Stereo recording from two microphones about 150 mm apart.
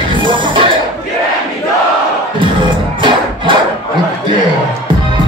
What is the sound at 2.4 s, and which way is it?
Crowd, 30° right (ahead or behind).